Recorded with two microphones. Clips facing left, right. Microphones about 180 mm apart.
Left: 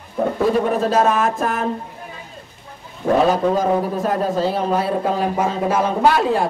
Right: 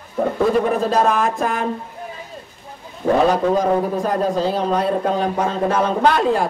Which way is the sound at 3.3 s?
Centre (ahead or behind).